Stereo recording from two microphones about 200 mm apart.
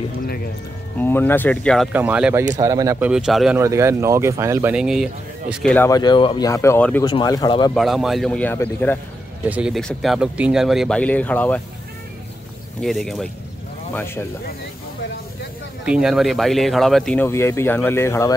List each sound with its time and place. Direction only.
0.9 s speech: 10° left (ahead or behind)
1.9 s speech: 5° right (ahead or behind)
2.6 s speech: 15° right (ahead or behind)
3.1 s speech: 5° right (ahead or behind)
3.5 s speech: 15° right (ahead or behind); by 5.9 s 5° left (ahead or behind)
5.9 s speech: 20° left (ahead or behind)
7.7 s speech: centre (ahead or behind)
9.5 s speech: 5° right (ahead or behind)
12.8 s speech: centre (ahead or behind)
15.8 s speech: 5° right (ahead or behind); by 18.3 s 15° left (ahead or behind)